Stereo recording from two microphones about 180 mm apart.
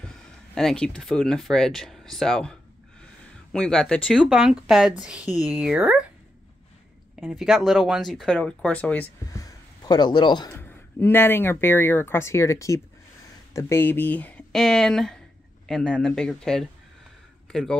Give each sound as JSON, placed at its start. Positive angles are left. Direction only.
{"t": 0.6, "sound": "speech", "side_deg": 5}
{"t": 3.5, "sound": "speech", "side_deg": 5}
{"t": 7.2, "sound": "speech", "side_deg": 0}
{"t": 9.3, "sound": "a sound", "side_deg": 20}
{"t": 10.5, "sound": "speech", "side_deg": 15}